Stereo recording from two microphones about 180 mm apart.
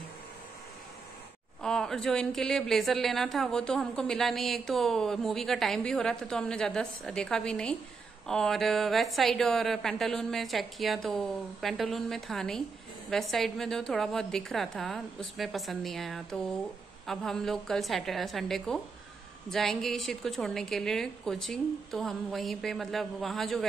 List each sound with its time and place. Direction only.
1.6 s a woman's voice: 5° left (ahead or behind)